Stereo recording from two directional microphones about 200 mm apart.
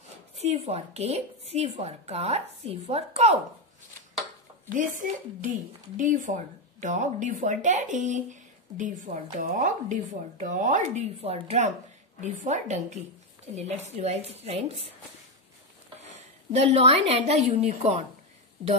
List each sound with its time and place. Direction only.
0.4 s a woman's voice: 30° right (ahead or behind)
4.7 s a woman's voice: 40° right (ahead or behind)
16.5 s a woman's voice: 30° right (ahead or behind)